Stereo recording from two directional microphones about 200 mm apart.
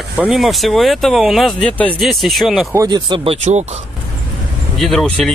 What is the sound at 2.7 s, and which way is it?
Speech, 20° right (ahead or behind).